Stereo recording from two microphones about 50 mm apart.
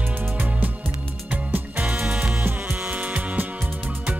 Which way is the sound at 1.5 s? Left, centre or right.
Right.